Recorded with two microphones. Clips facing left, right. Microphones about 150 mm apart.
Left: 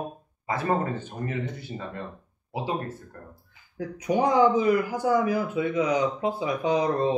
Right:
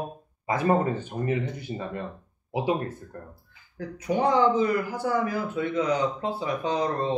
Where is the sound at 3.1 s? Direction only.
25° right (ahead or behind).